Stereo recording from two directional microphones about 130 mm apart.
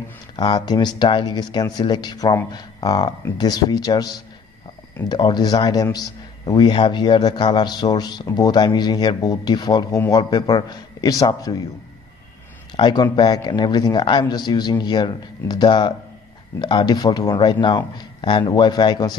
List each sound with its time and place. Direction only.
0.4 s a man's voice: 35° left (ahead or behind)
12.7 s a man's voice: 35° left (ahead or behind)